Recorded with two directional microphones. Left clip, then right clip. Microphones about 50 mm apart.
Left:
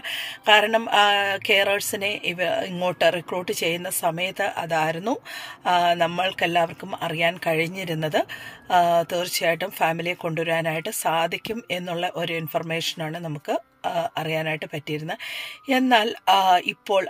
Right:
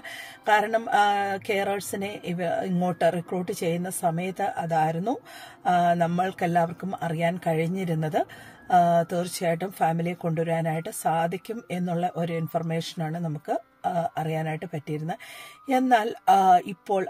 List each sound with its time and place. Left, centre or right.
0.1 s speech: right
4.2 s speech: right